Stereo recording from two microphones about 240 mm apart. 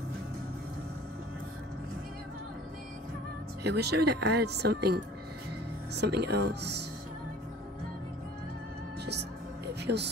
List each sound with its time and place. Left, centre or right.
3.6 s speech: right
9.8 s music: right